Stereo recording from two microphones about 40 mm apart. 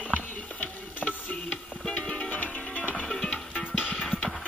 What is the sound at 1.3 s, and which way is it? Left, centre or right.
Music, left.